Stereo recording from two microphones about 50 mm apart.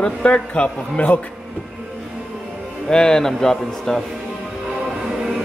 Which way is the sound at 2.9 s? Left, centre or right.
Centre.